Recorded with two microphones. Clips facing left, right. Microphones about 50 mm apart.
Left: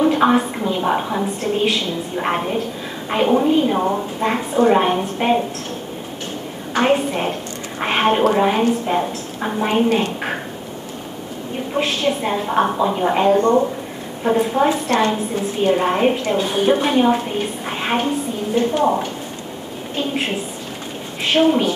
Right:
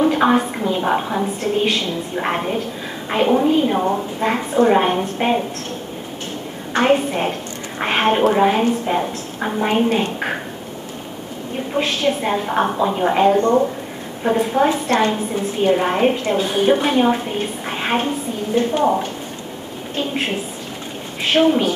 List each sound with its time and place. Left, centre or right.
0.0 s a woman's voice: centre
6.8 s a woman's voice: centre
11.7 s a woman's voice: centre
13.4 s speech: centre
14.2 s a woman's voice: centre
14.7 s a woman's voice: right
15.6 s a woman's voice: centre
21.5 s a woman's voice: centre